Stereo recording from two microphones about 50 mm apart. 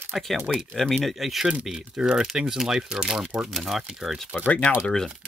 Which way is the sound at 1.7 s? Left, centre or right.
Centre.